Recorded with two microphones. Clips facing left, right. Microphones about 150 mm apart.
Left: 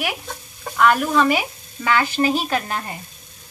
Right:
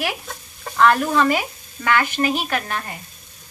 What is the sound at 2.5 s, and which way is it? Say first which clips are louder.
Speech: left 1 dB; 20° left (ahead or behind).